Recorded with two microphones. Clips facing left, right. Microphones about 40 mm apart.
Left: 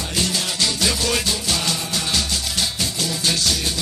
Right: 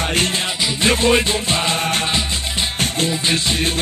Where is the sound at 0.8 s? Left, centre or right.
Right.